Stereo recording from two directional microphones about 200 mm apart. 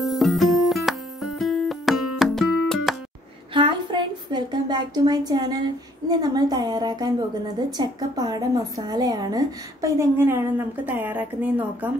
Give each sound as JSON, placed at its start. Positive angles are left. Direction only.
{"t": 0.0, "sound": "music", "side_deg": 0}
{"t": 3.5, "sound": "a woman's voice", "side_deg": -25}